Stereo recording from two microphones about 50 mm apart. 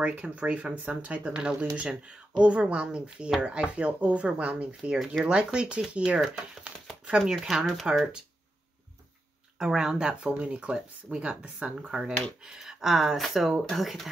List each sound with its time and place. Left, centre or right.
0.0 s speech: right
1.3 s speech: centre
9.6 s speech: centre
11.9 s speech: centre